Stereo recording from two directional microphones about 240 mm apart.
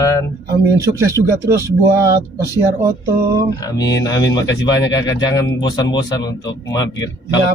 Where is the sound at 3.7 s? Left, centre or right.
Centre.